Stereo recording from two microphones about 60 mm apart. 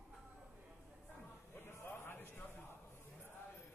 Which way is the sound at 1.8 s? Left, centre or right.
Left.